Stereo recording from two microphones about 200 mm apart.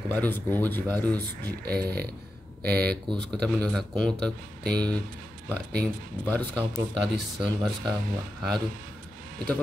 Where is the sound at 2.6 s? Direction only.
50° right (ahead or behind).